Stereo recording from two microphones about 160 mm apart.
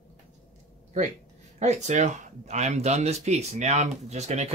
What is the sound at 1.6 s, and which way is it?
Speech, 45° right (ahead or behind).